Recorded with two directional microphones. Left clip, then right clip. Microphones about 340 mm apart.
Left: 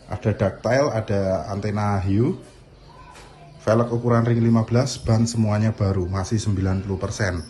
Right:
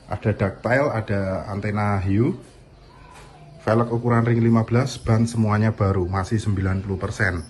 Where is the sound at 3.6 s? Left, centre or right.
Centre.